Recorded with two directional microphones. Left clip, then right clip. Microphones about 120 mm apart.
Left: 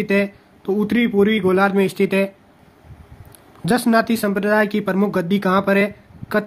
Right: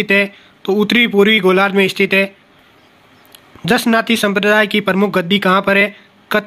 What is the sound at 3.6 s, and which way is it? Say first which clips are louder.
Speech: right 3 dB; 10° right (ahead or behind).